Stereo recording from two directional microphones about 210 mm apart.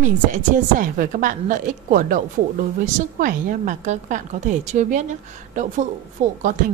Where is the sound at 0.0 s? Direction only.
40° right (ahead or behind).